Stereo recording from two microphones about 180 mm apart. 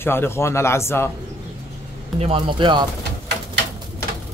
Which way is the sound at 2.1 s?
30° right (ahead or behind).